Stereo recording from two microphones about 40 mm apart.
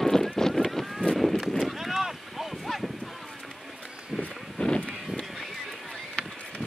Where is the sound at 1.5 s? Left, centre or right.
Centre.